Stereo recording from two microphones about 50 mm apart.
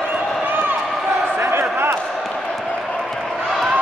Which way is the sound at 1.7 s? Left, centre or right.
Right.